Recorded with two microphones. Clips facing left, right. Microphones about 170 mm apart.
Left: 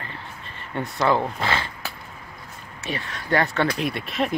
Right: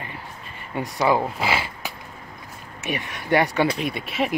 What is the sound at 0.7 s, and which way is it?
Speech, 10° right (ahead or behind).